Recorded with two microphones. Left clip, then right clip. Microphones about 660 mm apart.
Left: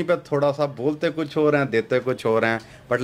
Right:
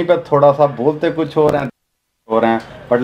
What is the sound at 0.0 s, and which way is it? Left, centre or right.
A man's voice, left.